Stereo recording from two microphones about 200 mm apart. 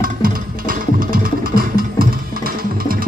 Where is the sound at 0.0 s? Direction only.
45° right (ahead or behind).